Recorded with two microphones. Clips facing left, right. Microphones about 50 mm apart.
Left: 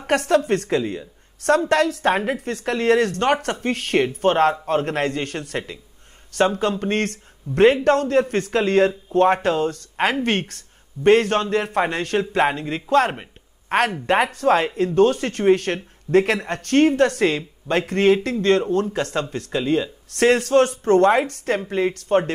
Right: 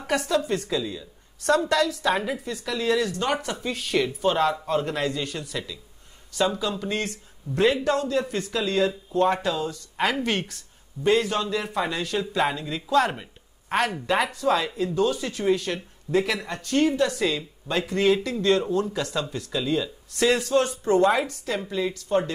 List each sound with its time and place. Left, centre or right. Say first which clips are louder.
0.0 s a woman's voice: left 6 dB; left
13.1 s a sound: left 3 dB; left
14.0 s speech: left 5 dB; left